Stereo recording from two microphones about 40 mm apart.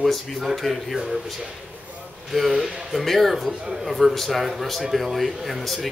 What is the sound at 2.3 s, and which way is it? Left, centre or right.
Speech, centre.